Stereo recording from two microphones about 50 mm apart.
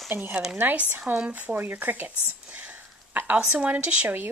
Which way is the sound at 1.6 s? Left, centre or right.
Right.